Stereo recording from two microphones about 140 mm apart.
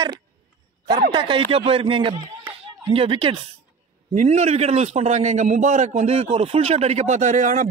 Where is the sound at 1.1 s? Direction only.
35° right (ahead or behind).